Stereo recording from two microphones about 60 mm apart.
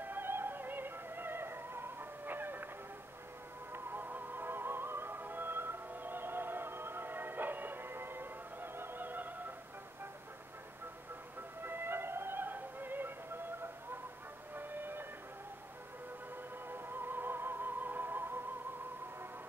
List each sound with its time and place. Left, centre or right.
0.0 s music: right
3.7 s music: right
11.6 s music: right
14.5 s music: right
16.6 s music: right